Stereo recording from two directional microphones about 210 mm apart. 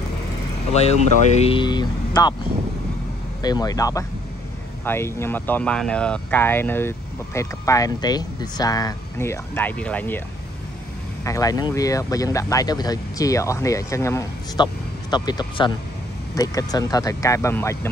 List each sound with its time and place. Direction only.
0.7 s speech: 30° left (ahead or behind)
3.4 s speech: 20° left (ahead or behind)
11.2 s speech: 15° left (ahead or behind)